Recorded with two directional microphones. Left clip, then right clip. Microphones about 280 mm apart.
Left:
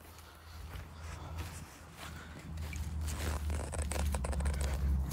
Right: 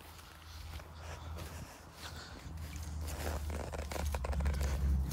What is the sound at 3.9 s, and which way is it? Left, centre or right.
Typing, right.